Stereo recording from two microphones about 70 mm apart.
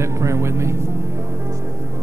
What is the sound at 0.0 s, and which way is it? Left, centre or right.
Speech, right.